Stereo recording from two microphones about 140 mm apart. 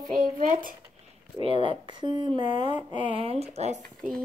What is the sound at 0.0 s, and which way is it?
Speech, 70° right (ahead or behind).